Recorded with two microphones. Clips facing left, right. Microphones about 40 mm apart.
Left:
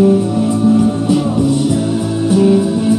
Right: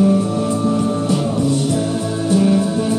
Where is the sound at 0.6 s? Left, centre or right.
Centre.